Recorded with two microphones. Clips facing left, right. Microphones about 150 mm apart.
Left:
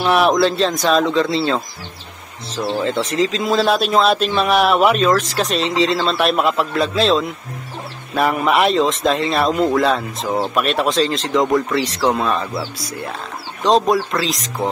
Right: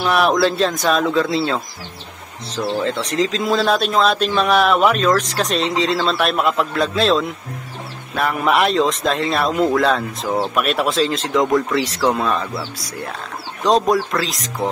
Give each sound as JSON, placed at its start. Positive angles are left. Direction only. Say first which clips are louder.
{"t": 0.0, "sound": "speech", "louder": "left 1 dB", "side_deg": 0}
{"t": 2.8, "sound": "speech", "louder": "left 3 dB", "side_deg": 0}